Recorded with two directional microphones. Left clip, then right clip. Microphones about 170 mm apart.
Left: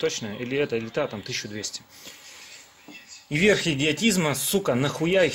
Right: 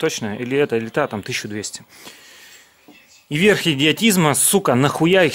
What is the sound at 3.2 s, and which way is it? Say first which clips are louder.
Speech: right 5 dB; 40° right (ahead or behind).